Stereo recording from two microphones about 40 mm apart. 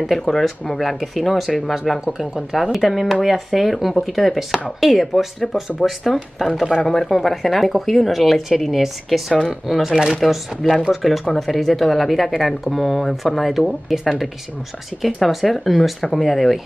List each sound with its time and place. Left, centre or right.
0.0 s speech: centre
5.8 s speech: centre
6.4 s speech: centre
6.8 s speech: centre
9.9 s speech: centre
10.2 s speech: centre